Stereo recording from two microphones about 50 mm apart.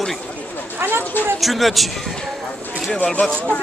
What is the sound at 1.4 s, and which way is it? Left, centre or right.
Speech, centre.